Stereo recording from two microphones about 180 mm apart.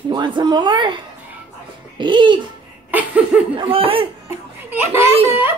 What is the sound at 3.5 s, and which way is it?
Speech, 30° right (ahead or behind).